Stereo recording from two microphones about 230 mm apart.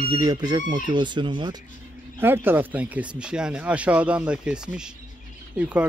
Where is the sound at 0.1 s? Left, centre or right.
Centre.